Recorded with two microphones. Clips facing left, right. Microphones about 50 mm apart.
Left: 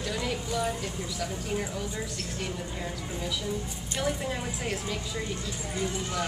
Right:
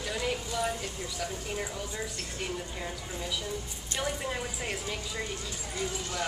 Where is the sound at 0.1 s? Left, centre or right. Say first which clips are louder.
Even; centre.